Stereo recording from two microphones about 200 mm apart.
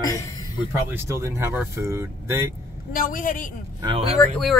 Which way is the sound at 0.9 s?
15° right (ahead or behind).